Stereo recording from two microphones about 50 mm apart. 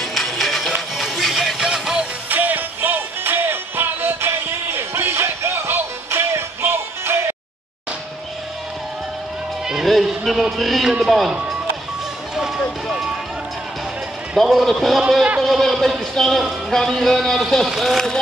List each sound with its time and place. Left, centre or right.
0.0 s music: centre
2.2 s music: right
6.6 s music: right
9.8 s speech: centre
12.8 s vehicle: centre
14.3 s a man's voice: centre